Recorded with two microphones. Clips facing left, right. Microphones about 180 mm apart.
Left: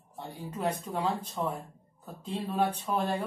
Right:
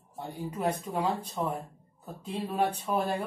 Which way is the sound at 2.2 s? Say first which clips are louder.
Even; 10° right (ahead or behind).